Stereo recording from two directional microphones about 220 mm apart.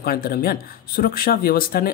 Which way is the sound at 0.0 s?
40° left (ahead or behind).